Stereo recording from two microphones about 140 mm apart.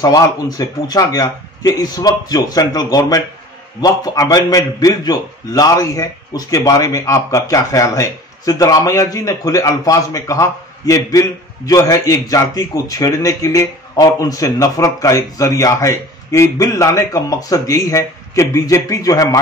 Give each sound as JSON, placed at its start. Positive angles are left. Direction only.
{"t": 0.0, "sound": "a man's voice", "side_deg": 25}